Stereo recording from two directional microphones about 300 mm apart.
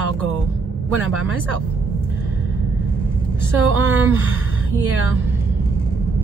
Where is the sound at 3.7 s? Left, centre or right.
Right.